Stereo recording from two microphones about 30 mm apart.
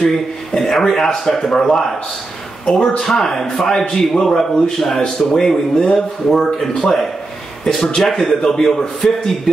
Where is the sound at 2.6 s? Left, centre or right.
Centre.